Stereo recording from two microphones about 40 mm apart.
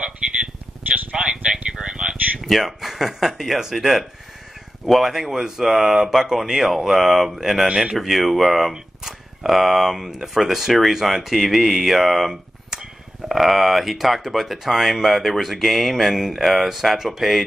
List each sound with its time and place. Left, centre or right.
0.2 s a sound: centre
2.4 s speech: centre
7.6 s speech: right
7.9 s speech: centre
12.3 s a sound: centre
13.3 s speech: centre